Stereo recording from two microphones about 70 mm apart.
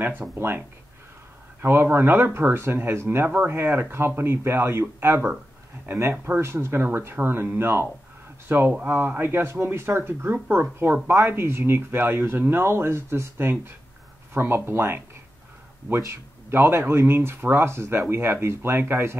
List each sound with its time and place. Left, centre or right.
0.2 s speech: centre
1.6 s speech: right
16.0 s speech: right